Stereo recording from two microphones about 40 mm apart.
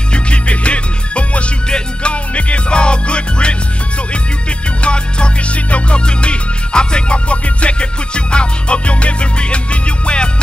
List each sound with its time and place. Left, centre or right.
0.1 s music: left
4.8 s music: left